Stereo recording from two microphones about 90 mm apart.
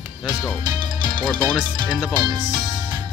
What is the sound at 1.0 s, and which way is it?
Music, 55° right (ahead or behind).